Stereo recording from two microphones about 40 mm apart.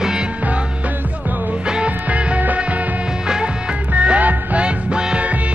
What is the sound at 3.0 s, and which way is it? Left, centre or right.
Music, right.